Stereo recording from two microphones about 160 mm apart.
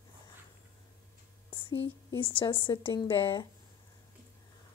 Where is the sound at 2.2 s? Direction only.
35° left (ahead or behind).